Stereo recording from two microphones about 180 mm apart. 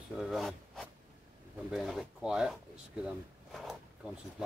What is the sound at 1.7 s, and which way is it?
Speech, centre (ahead or behind).